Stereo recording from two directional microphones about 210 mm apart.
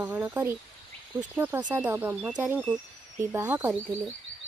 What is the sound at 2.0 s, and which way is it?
Speech, 10° right (ahead or behind).